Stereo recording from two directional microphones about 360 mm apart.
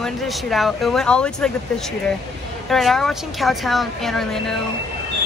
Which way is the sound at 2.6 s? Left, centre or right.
Centre.